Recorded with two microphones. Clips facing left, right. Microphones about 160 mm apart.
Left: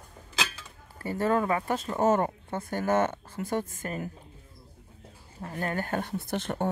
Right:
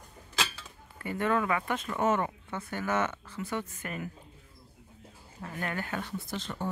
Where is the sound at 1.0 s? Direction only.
35° left (ahead or behind).